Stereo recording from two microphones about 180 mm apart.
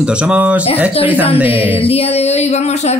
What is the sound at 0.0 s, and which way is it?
Speech, 5° right (ahead or behind).